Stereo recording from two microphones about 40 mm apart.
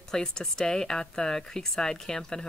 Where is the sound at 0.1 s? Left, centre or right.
Centre.